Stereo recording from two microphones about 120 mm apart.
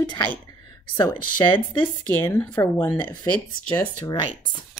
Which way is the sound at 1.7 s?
15° left (ahead or behind).